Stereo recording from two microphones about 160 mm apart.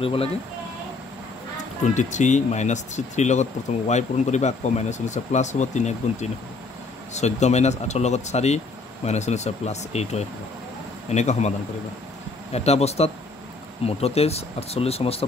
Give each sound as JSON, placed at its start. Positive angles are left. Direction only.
{"t": 0.0, "sound": "speech", "side_deg": 35}
{"t": 2.0, "sound": "speech", "side_deg": 50}
{"t": 12.5, "sound": "speech", "side_deg": 40}